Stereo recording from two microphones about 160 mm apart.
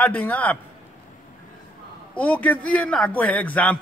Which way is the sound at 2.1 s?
10° left (ahead or behind).